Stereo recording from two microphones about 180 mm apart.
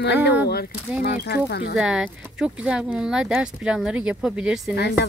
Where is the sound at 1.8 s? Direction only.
5° right (ahead or behind).